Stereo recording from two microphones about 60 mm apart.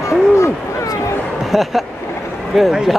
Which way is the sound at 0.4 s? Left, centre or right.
Left.